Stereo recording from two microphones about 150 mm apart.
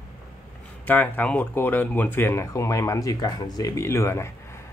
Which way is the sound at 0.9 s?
10° left (ahead or behind).